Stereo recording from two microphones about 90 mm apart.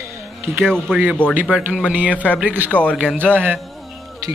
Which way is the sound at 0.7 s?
5° left (ahead or behind).